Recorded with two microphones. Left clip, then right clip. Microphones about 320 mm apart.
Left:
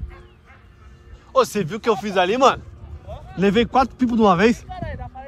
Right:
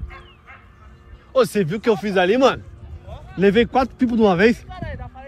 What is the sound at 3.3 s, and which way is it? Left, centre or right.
Speech, centre.